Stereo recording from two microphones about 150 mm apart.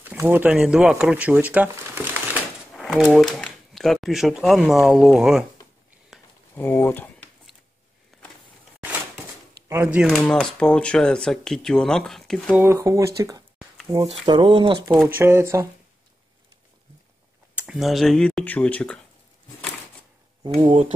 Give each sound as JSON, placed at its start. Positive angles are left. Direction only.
{"t": 0.0, "sound": "speech", "side_deg": -15}
{"t": 2.7, "sound": "a sound", "side_deg": 0}
{"t": 3.2, "sound": "speech", "side_deg": 0}
{"t": 6.5, "sound": "speech", "side_deg": 15}
{"t": 8.1, "sound": "a sound", "side_deg": 0}
{"t": 9.7, "sound": "speech", "side_deg": -15}
{"t": 10.1, "sound": "speech", "side_deg": 5}
{"t": 12.5, "sound": "speech", "side_deg": -20}
{"t": 14.2, "sound": "speech", "side_deg": -35}
{"t": 15.1, "sound": "speech", "side_deg": -15}
{"t": 17.6, "sound": "speech", "side_deg": -5}
{"t": 20.4, "sound": "speech", "side_deg": -40}